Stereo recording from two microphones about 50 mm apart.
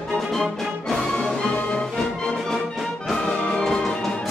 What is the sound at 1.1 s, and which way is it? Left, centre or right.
Music, centre.